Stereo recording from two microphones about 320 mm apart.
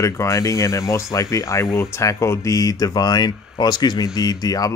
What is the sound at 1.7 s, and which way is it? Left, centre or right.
Speech, centre.